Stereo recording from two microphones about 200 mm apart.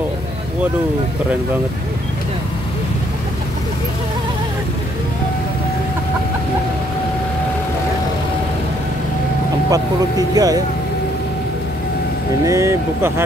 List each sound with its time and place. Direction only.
9.7 s speech: 20° right (ahead or behind)
12.4 s speech: 15° right (ahead or behind)